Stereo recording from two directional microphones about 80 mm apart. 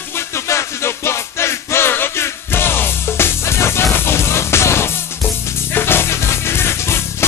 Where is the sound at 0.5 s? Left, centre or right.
Left.